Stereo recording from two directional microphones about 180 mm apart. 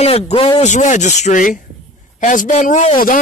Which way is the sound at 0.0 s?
35° left (ahead or behind).